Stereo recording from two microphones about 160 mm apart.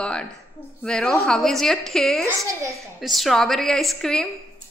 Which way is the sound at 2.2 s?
20° right (ahead or behind).